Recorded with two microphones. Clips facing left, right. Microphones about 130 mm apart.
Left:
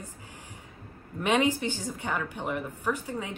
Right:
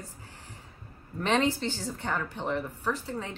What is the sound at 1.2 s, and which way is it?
A woman's voice, 10° left (ahead or behind).